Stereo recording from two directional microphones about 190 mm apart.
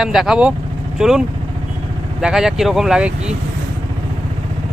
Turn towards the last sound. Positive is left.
turn(degrees=-5)  # may be behind; listen again after turning